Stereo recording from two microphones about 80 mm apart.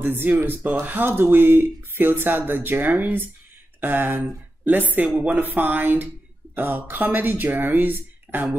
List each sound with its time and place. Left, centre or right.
0.0 s speech: right